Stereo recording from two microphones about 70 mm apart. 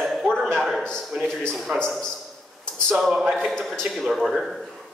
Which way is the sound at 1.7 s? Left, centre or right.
Centre.